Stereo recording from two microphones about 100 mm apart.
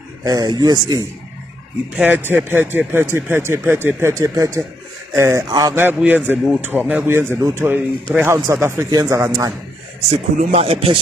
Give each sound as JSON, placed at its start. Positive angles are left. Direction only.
{"t": 0.2, "sound": "speech", "side_deg": -40}
{"t": 2.0, "sound": "speech", "side_deg": -15}
{"t": 5.5, "sound": "speech", "side_deg": -35}
{"t": 5.8, "sound": "a man's voice", "side_deg": -20}
{"t": 7.7, "sound": "a man's voice", "side_deg": -15}
{"t": 8.9, "sound": "speech", "side_deg": -35}
{"t": 10.5, "sound": "speech", "side_deg": -90}